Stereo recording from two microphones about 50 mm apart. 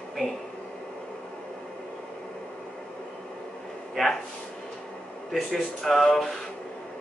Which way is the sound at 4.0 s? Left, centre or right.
Centre.